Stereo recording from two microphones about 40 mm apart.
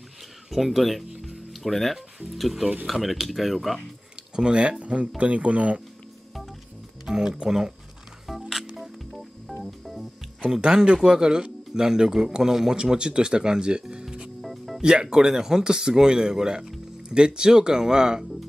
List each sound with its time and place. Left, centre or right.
0.5 s speech: centre
4.4 s speech: right
7.1 s speech: centre
8.3 s music: centre
10.4 s a man's voice: right
14.4 s music: centre
14.8 s a man's voice: right